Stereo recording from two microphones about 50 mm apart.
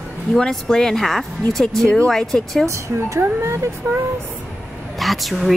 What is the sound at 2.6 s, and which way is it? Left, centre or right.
Speech, right.